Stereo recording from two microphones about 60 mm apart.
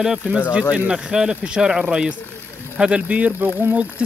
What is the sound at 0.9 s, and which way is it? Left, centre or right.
Speech, centre.